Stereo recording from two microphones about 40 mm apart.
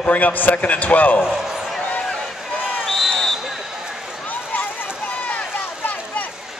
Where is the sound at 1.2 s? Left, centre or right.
Centre.